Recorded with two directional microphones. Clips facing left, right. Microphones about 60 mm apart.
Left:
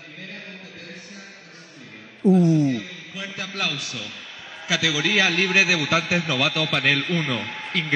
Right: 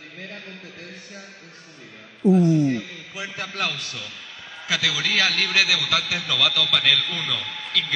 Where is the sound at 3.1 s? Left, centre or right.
Centre.